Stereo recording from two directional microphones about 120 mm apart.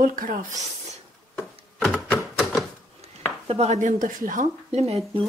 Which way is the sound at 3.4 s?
65° right (ahead or behind).